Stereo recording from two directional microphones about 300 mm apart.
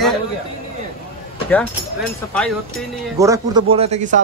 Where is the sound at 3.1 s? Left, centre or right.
Centre.